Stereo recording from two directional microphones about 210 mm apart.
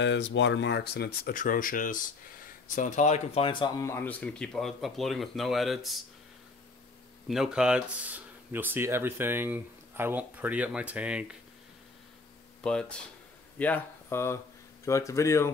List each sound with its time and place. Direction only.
0.0 s speech: 60° left (ahead or behind); by 5.9 s centre (ahead or behind)
7.2 s speech: centre (ahead or behind)
12.6 s speech: 5° left (ahead or behind)